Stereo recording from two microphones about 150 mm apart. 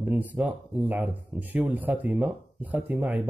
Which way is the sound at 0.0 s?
10° right (ahead or behind).